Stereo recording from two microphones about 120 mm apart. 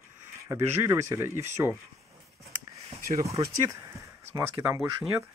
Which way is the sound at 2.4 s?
60° right (ahead or behind).